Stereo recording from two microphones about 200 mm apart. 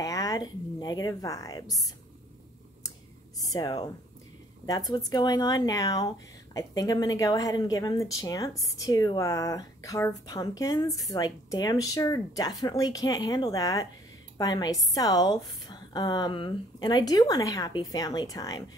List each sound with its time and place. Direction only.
0.0 s speech: 15° left (ahead or behind)
3.3 s a woman's voice: 20° left (ahead or behind)
4.9 s a woman's voice: 20° left (ahead or behind)